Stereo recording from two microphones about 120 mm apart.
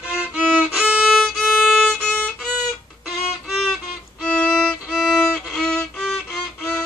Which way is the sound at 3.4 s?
5° right (ahead or behind).